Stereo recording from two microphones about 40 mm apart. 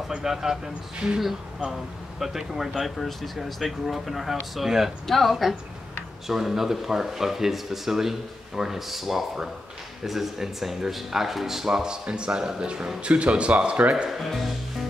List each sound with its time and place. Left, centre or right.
0.1 s speech: centre
1.2 s speech: centre
6.2 s speech: centre; by 14.0 s right
14.0 s speech: centre